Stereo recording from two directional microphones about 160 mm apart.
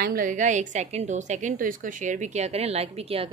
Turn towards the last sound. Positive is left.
turn(degrees=-40)  # may be behind; listen again after turning